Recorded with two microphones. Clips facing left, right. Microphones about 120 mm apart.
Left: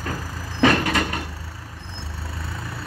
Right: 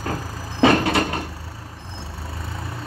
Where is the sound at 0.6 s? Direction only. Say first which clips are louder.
Right 2 dB; 25° right (ahead or behind).